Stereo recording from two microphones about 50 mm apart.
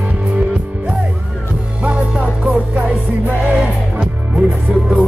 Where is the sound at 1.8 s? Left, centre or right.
Right.